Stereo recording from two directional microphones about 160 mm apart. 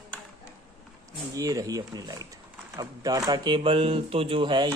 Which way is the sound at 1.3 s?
20° right (ahead or behind).